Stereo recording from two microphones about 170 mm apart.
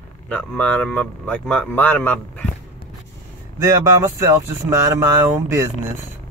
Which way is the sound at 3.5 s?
20° right (ahead or behind).